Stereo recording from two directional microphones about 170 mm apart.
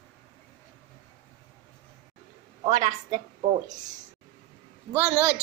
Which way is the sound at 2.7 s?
45° right (ahead or behind).